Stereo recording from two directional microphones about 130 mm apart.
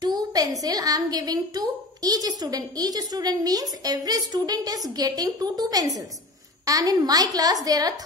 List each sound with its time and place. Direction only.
0.0 s a woman's voice: 30° right (ahead or behind)